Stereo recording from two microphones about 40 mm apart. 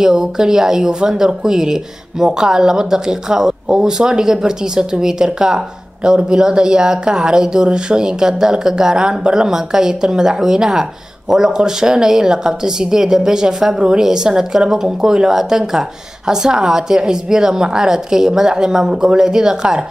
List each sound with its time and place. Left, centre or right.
0.0 s speech: centre